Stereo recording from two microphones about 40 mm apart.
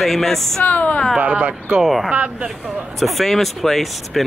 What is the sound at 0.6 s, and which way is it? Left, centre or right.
Speech, left.